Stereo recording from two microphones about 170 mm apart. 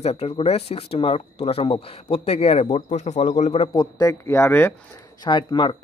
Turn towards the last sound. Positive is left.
turn(degrees=25)  # may be behind; listen again after turning